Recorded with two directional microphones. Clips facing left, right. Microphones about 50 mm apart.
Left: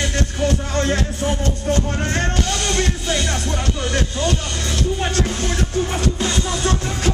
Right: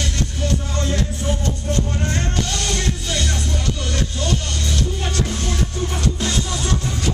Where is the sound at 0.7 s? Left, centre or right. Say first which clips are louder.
Left 5 dB; left.